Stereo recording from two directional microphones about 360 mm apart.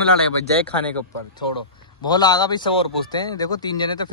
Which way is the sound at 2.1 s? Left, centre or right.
Centre.